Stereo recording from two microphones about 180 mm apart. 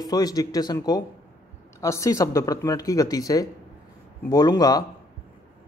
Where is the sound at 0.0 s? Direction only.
20° left (ahead or behind).